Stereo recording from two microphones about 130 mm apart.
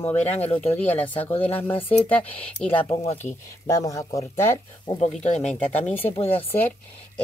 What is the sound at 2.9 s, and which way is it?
Speech, 55° left (ahead or behind).